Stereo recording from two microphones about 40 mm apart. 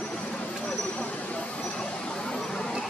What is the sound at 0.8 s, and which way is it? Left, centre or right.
Vehicle, left.